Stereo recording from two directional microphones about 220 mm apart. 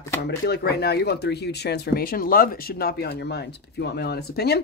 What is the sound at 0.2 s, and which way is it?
Speech, 50° left (ahead or behind).